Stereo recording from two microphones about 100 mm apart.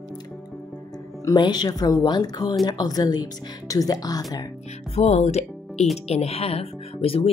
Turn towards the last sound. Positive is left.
turn(degrees=75)  # may be behind; listen again after turning